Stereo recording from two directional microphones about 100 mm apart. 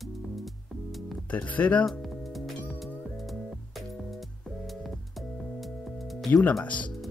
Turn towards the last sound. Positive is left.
turn(degrees=15)  # may be behind; listen again after turning